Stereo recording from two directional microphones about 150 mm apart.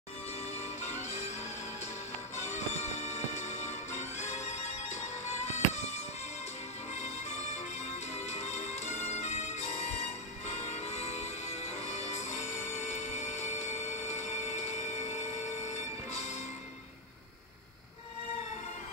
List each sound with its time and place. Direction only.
0.6 s music: 50° left (ahead or behind)
2.3 s music: 50° left (ahead or behind)